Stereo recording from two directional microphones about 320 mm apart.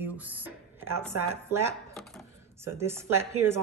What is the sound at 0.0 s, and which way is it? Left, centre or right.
Speech, centre.